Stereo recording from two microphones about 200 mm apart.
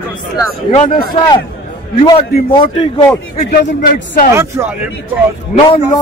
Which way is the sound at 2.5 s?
25° left (ahead or behind).